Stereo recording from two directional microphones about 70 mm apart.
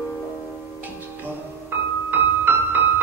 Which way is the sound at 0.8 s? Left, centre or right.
Right.